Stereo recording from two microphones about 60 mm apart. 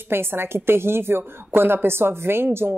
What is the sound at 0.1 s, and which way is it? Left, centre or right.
A woman's voice, right.